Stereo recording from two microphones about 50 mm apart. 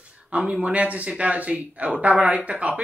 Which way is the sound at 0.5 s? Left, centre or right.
Right.